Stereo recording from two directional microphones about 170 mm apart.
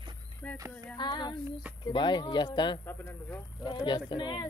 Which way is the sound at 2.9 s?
10° left (ahead or behind).